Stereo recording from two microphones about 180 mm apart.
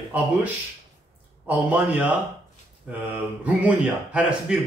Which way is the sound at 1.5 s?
10° right (ahead or behind).